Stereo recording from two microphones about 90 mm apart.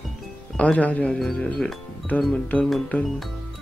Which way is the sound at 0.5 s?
15° left (ahead or behind).